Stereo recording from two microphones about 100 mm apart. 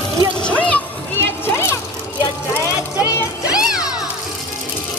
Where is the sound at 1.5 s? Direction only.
25° left (ahead or behind).